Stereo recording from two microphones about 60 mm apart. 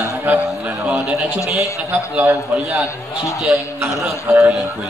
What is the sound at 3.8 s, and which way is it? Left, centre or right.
Speech, right.